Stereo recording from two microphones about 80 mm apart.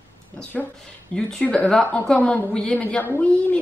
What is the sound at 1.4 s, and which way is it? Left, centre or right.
A woman's voice, centre.